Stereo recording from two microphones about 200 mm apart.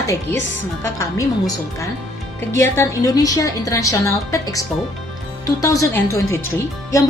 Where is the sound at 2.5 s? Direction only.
15° left (ahead or behind).